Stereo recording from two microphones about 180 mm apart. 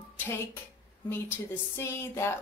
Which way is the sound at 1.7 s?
15° left (ahead or behind).